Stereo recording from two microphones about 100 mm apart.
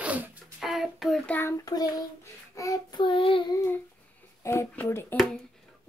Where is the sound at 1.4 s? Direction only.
35° left (ahead or behind).